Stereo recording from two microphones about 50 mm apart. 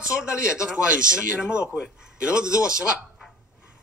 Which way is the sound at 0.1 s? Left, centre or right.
Centre.